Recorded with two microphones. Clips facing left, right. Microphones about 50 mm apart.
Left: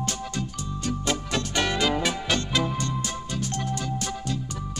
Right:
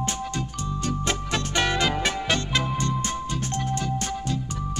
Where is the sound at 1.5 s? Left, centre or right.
Right.